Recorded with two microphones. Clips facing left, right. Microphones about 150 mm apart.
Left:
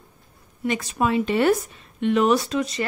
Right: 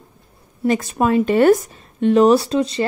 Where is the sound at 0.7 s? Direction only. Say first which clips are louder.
Right 6 dB; 45° right (ahead or behind).